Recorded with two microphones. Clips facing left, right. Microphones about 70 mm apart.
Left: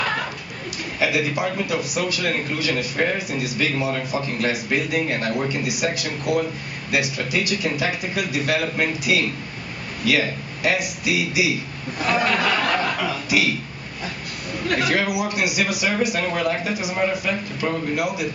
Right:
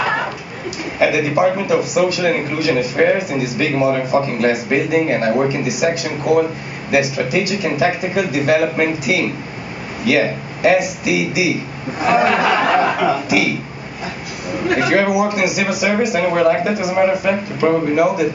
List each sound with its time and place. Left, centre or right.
0.0 s a sound: centre
0.9 s a man's voice: centre
16.7 s speech: centre
17.3 s speech: centre
17.9 s speech: centre